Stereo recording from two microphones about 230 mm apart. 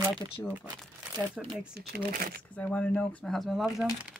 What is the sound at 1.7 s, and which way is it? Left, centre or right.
Speech, right.